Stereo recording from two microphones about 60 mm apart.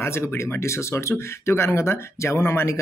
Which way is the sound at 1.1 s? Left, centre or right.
Left.